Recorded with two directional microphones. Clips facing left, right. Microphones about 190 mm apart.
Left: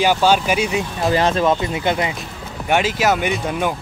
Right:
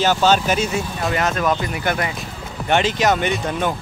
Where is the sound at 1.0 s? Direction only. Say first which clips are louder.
Left 4 dB; 30° left (ahead or behind).